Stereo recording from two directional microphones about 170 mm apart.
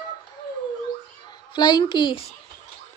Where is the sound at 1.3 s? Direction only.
25° left (ahead or behind).